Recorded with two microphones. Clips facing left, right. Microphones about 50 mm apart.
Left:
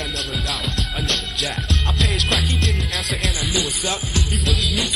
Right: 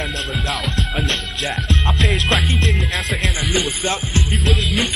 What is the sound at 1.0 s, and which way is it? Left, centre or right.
Music, right.